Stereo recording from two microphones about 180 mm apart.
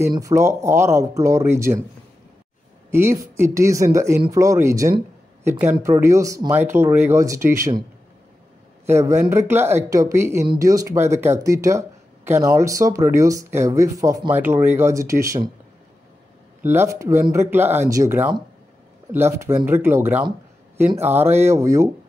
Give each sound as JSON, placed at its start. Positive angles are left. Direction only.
{"t": 0.0, "sound": "speech", "side_deg": -15}
{"t": 2.9, "sound": "speech", "side_deg": -15}
{"t": 8.8, "sound": "speech", "side_deg": -15}
{"t": 16.6, "sound": "speech", "side_deg": -15}